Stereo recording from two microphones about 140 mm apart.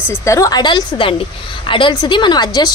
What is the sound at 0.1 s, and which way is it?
Speech, 20° left (ahead or behind).